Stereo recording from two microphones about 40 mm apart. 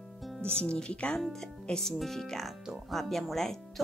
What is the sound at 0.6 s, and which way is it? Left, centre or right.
Speech, left.